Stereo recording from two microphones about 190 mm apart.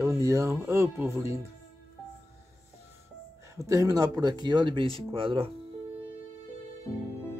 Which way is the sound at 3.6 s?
15° right (ahead or behind).